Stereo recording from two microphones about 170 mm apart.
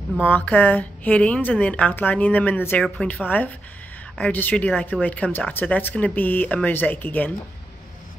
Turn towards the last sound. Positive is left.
turn(degrees=10)  # may be behind; listen again after turning